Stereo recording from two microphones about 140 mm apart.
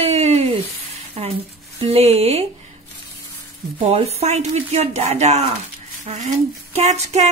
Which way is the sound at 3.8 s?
45° right (ahead or behind).